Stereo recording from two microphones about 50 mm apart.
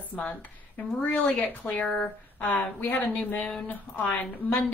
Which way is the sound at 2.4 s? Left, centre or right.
Left.